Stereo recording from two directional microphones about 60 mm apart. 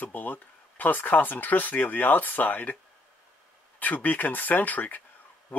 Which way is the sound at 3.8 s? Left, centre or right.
Left.